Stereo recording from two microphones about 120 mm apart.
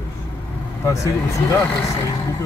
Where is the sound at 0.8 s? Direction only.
25° left (ahead or behind).